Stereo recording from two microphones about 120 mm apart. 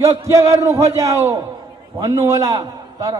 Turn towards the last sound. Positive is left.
turn(degrees=-30)  # may be behind; listen again after turning